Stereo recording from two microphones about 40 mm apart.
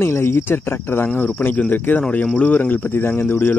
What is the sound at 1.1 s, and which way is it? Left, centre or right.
A man's voice, left.